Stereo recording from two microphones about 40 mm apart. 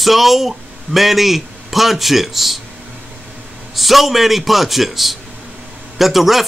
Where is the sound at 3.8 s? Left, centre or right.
Centre.